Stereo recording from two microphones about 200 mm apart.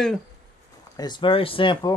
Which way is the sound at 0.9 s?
20° left (ahead or behind).